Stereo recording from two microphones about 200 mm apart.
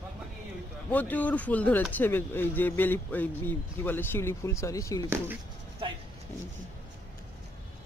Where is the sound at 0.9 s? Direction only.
10° left (ahead or behind).